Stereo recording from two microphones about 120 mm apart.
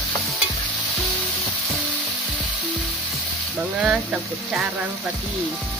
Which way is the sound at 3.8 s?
10° right (ahead or behind).